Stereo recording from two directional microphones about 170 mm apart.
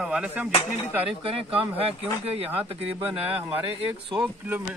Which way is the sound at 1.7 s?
35° right (ahead or behind).